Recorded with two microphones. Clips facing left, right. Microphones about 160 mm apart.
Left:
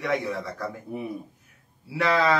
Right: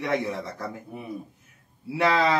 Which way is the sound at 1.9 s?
20° right (ahead or behind).